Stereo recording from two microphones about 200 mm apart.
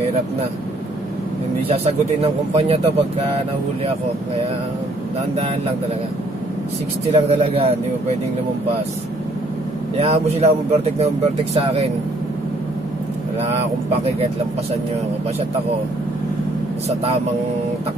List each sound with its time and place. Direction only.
2.5 s a man's voice: 30° right (ahead or behind)
7.1 s a man's voice: 30° right (ahead or behind)
9.9 s a man's voice: 30° right (ahead or behind)